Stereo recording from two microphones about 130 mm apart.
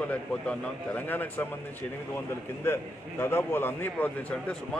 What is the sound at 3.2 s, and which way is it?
Speech, 20° left (ahead or behind).